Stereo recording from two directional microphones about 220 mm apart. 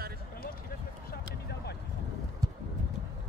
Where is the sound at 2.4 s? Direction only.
15° right (ahead or behind).